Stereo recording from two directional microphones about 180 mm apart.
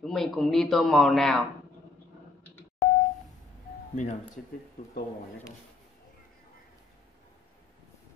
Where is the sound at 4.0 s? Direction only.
45° left (ahead or behind).